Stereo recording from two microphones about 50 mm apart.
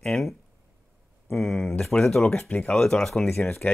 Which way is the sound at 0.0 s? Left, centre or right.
Centre.